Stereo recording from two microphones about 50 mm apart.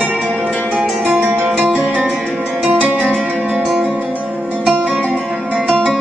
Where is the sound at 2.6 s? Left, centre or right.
Right.